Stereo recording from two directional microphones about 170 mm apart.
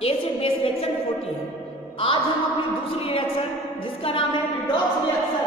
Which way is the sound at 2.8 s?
35° left (ahead or behind).